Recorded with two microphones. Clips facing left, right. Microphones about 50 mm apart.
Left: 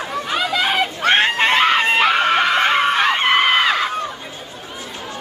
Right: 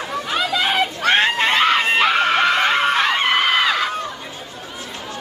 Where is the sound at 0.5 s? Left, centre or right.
Centre.